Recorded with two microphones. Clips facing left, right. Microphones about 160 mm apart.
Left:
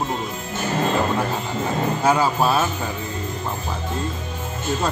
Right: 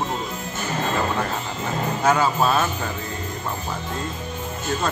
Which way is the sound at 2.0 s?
10° left (ahead or behind).